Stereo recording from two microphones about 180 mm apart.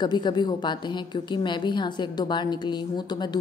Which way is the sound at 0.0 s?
25° left (ahead or behind).